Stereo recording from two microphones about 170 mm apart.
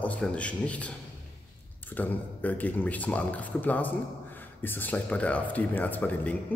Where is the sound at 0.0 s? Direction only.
5° left (ahead or behind).